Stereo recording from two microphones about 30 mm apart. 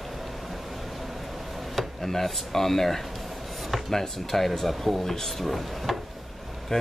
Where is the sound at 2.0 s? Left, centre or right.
Centre.